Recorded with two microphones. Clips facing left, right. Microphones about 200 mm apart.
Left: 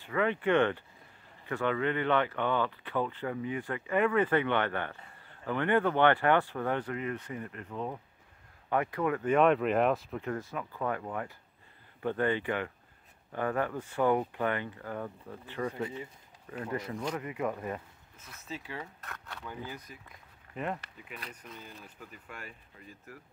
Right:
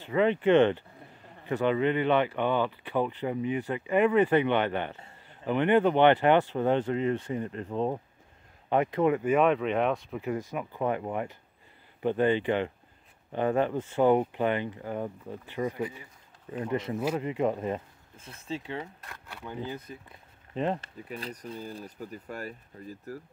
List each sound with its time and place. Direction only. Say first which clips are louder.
0.0 s speech: right 5 dB; 25° right (ahead or behind)
9.2 s speech: right 1 dB; 5° right (ahead or behind)
10.2 s speech: right 4 dB; 15° right (ahead or behind)
18.9 s speech: even; 10° right (ahead or behind)
19.4 s speech: right 7 dB; 25° right (ahead or behind); by 23.2 s 40° right (ahead or behind)